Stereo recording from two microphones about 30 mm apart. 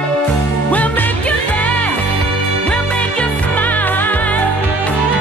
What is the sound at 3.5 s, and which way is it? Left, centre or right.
Music, left.